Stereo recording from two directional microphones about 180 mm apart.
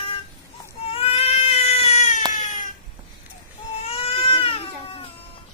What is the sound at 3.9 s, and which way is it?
Goat, 35° left (ahead or behind).